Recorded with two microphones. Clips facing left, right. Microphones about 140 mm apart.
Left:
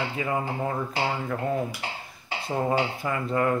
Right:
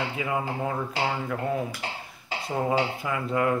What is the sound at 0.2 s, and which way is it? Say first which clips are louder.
Dishes: left 1 dB; 5° right (ahead or behind).